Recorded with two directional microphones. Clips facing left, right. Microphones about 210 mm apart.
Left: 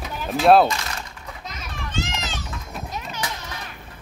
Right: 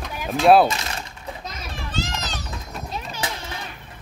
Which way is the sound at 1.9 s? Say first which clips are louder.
Even; 35° right (ahead or behind).